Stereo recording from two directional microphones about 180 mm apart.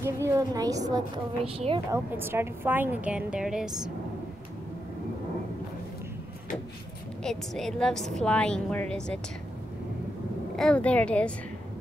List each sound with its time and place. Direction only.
0.0 s a woman's voice: 15° right (ahead or behind)
1.4 s speech: 30° right (ahead or behind)
1.9 s a woman's voice: 10° right (ahead or behind)
7.2 s a woman's voice: 5° left (ahead or behind)
10.5 s speech: 5° left (ahead or behind)